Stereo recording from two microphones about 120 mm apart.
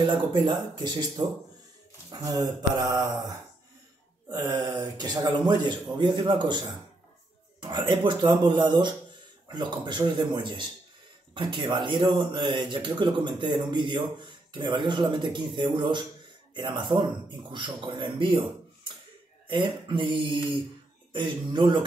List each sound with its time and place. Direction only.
0.0 s speech: 45° right (ahead or behind)
7.6 s speech: 40° right (ahead or behind)
19.4 s speech: 40° right (ahead or behind)